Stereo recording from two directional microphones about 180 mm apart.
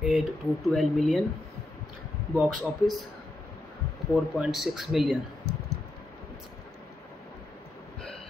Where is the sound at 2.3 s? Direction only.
Centre (ahead or behind).